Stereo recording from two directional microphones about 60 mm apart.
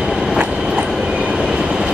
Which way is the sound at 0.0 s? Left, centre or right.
Centre.